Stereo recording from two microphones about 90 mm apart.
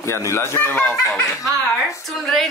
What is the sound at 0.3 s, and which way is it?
Speech, 25° left (ahead or behind).